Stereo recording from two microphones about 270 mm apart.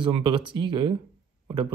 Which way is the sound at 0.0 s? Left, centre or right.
Centre.